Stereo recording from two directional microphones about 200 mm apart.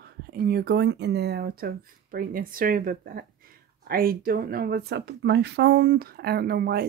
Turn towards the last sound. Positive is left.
turn(degrees=-50)  # may be behind; listen again after turning